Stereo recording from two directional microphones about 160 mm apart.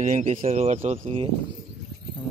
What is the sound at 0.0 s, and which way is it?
Speech, 50° right (ahead or behind).